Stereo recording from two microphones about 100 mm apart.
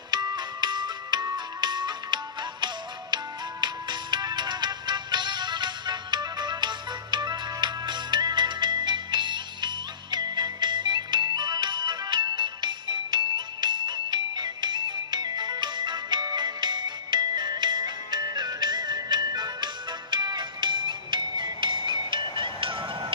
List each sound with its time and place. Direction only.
0.1 s music: 45° right (ahead or behind)
3.6 s music: 45° right (ahead or behind)